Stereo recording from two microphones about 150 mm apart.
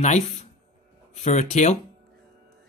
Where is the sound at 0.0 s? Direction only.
50° left (ahead or behind).